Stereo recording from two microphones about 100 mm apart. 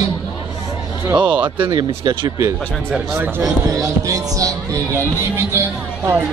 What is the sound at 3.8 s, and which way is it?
Music, 35° right (ahead or behind).